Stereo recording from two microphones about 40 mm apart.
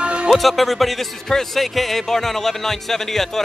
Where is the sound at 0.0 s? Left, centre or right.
Right.